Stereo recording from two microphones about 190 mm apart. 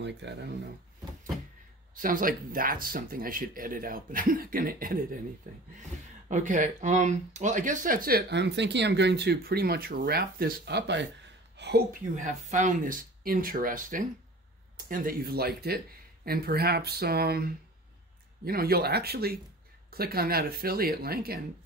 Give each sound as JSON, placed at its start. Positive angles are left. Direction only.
{"t": 0.0, "sound": "speech", "side_deg": -65}
{"t": 2.0, "sound": "speech", "side_deg": -45}
{"t": 11.5, "sound": "a sound", "side_deg": -65}
{"t": 12.2, "sound": "speech", "side_deg": -40}